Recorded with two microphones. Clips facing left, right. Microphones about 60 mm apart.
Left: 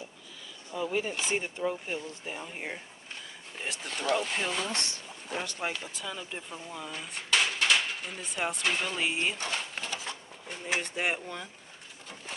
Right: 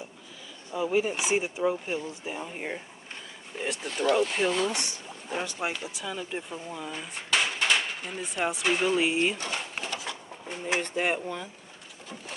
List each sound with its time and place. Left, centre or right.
0.7 s speech: centre
9.9 s a sound: right
10.7 s speech: centre